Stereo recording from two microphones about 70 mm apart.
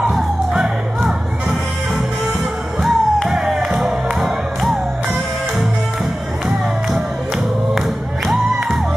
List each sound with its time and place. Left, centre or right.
0.1 s music: centre
2.8 s music: centre
8.3 s music: centre